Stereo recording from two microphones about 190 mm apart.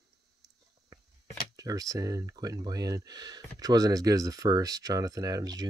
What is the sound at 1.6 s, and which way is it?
Speech, 20° right (ahead or behind).